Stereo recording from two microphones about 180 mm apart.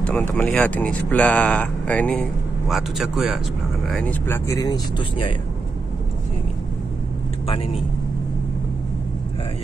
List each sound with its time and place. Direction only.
0.0 s speech: 10° left (ahead or behind); by 5.3 s 25° left (ahead or behind)
7.4 s speech: 30° left (ahead or behind)